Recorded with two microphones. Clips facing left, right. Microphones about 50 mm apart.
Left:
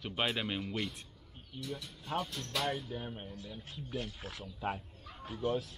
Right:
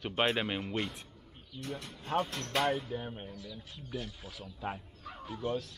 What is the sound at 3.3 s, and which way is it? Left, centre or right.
Speech, left.